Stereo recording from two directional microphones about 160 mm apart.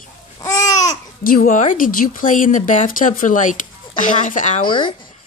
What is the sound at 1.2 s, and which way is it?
Speech, 60° left (ahead or behind).